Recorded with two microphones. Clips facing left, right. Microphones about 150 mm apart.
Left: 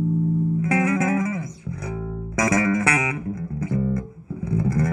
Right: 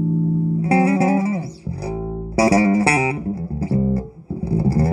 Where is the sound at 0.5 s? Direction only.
30° right (ahead or behind).